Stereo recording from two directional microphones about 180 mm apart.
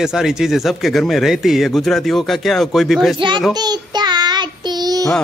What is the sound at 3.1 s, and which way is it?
Speech, 25° right (ahead or behind).